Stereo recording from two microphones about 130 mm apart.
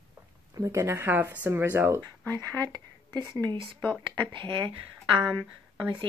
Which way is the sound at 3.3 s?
30° right (ahead or behind).